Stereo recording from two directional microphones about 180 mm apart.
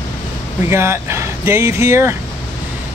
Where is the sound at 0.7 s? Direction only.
15° right (ahead or behind).